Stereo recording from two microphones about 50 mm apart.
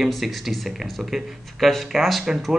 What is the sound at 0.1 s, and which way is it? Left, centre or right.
Speech, centre.